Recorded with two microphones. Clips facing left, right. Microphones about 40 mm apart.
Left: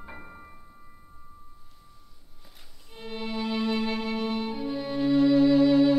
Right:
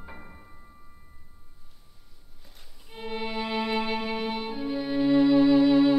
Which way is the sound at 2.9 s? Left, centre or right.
Centre.